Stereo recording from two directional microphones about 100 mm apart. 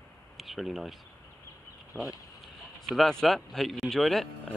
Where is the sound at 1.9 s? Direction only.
25° left (ahead or behind).